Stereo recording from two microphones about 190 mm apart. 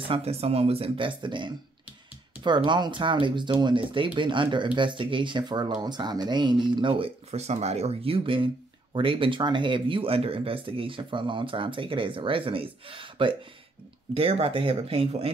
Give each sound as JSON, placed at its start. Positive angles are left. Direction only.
{"t": 0.1, "sound": "speech", "side_deg": -30}